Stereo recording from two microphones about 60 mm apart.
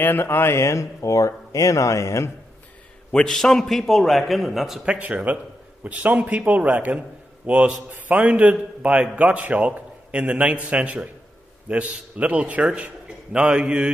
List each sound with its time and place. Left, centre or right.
0.0 s speech: left
3.1 s a man's voice: centre
4.8 s a man's voice: right